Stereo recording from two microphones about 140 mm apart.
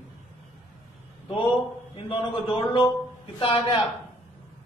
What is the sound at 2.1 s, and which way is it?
A man's voice, 40° left (ahead or behind).